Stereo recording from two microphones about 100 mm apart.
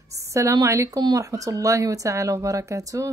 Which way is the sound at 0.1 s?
30° right (ahead or behind).